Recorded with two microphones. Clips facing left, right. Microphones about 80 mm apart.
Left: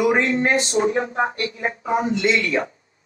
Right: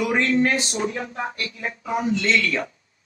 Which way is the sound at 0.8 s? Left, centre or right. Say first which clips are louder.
Left 6 dB; left.